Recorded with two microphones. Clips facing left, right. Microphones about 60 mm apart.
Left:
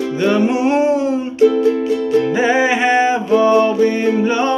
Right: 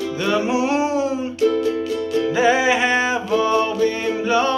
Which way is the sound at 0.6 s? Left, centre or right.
Centre.